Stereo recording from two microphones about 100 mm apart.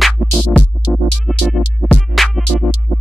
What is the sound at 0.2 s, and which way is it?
Music, 10° left (ahead or behind).